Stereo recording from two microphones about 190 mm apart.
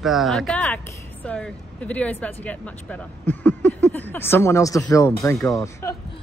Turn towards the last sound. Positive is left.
turn(degrees=15)  # may be behind; listen again after turning